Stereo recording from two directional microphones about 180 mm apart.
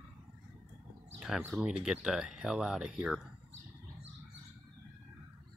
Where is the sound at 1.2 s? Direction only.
5° right (ahead or behind).